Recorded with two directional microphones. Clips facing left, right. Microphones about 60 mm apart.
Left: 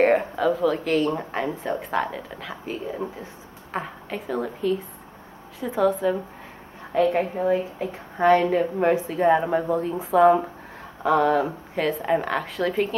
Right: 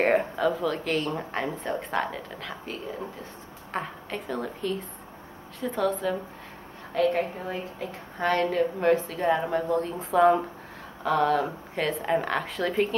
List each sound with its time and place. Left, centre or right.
0.0 s a woman's voice: centre